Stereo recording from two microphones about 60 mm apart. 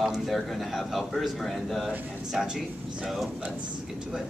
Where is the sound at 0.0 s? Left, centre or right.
Centre.